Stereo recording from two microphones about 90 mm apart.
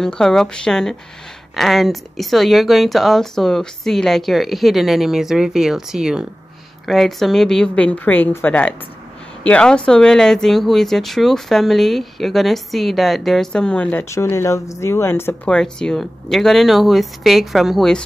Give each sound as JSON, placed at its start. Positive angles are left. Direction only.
{"t": 0.0, "sound": "a woman's voice", "side_deg": 5}
{"t": 14.3, "sound": "speech", "side_deg": 35}
{"t": 15.4, "sound": "speech", "side_deg": 10}